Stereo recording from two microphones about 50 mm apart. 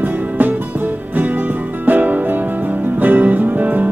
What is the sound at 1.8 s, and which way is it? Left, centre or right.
Music, right.